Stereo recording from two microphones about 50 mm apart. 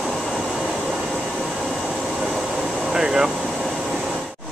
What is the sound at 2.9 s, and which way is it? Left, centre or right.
Air conditioning, centre.